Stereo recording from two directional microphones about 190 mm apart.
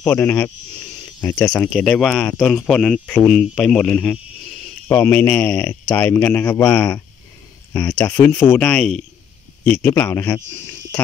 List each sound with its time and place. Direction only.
0.0 s speech: 10° left (ahead or behind)